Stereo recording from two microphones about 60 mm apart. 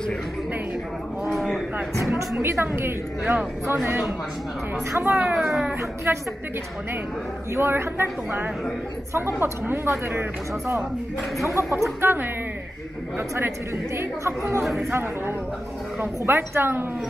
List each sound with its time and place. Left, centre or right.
1.2 s a sound: centre
2.4 s a woman's voice: right
5.1 s speech: centre
5.4 s speech: centre
6.1 s a man's voice: right
7.5 s a man's voice: right
11.4 s a woman's voice: right
13.9 s a woman's voice: right